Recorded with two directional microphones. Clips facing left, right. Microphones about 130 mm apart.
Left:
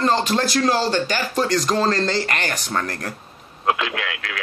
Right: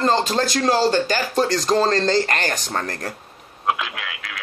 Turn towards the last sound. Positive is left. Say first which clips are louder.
# left 5 dB
turn(degrees=0)  # may be behind; listen again after turning